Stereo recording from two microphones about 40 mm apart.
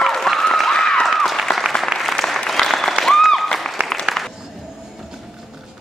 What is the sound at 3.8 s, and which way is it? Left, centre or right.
Applause, right.